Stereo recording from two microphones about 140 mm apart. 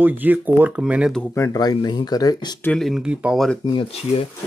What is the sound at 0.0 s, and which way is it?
Speech, 15° right (ahead or behind).